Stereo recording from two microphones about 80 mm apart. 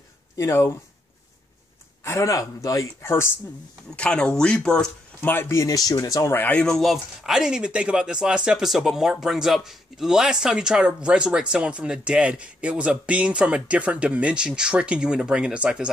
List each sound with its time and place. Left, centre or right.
0.4 s speech: left
2.0 s speech: left
3.9 s speech: centre
5.2 s speech: left
6.3 s speech: left
6.6 s speech: centre